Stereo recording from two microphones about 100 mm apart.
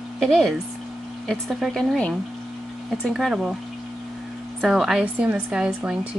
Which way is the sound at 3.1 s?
5° right (ahead or behind).